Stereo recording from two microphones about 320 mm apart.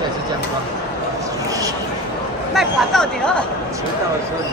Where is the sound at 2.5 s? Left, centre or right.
Centre.